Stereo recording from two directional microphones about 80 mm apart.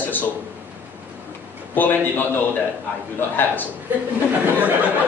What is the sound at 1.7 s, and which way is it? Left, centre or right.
Speech, left.